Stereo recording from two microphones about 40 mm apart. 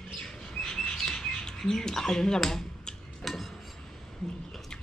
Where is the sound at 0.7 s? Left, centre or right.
Centre.